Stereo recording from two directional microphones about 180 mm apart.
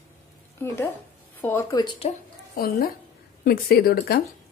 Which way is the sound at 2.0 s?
55° left (ahead or behind).